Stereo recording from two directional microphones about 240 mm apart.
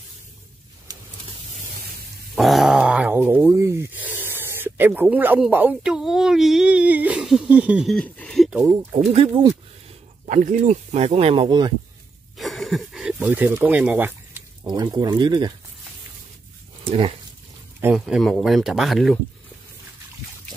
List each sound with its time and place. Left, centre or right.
2.3 s dog: centre
9.1 s speech: right
12.4 s speech: centre
17.7 s speech: centre